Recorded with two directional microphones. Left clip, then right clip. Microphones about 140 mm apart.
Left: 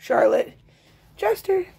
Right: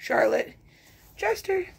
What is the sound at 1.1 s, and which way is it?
Speech, 35° left (ahead or behind).